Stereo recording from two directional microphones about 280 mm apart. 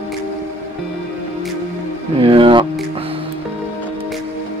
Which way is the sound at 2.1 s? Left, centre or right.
Centre.